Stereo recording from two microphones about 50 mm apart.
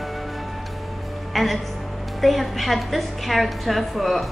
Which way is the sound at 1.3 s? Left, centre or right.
Centre.